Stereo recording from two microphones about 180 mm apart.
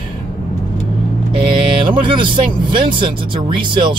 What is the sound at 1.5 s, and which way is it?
Speech, 25° right (ahead or behind).